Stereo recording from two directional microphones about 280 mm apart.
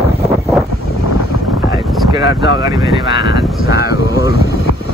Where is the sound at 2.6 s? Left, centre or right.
Centre.